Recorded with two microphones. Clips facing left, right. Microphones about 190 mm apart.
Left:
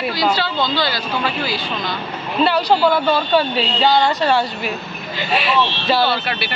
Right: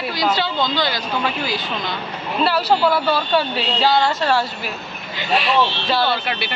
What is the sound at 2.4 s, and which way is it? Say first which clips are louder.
Speech: left 2 dB; centre (ahead or behind).